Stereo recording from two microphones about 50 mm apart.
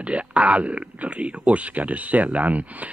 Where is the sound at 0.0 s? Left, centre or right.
Right.